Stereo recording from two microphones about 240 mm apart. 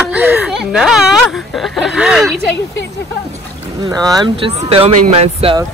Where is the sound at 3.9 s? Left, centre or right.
Centre.